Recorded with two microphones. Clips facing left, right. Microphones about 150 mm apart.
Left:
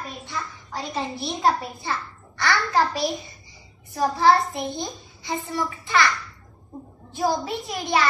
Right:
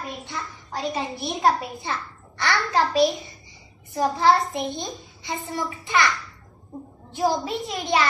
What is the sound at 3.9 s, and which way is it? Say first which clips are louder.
A child's voice: left 1 dB; 20° right (ahead or behind).